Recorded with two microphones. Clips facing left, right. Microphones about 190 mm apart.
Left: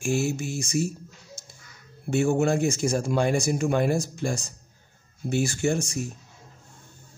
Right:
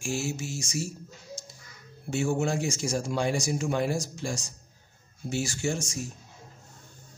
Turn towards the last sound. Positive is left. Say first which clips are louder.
# left 5 dB
turn(degrees=60)  # may be behind; listen again after turning